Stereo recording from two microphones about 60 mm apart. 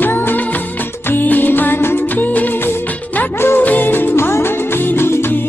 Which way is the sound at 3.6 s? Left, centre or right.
Left.